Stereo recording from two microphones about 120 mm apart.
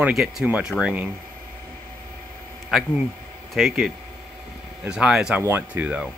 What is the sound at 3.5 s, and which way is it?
Speech, centre (ahead or behind).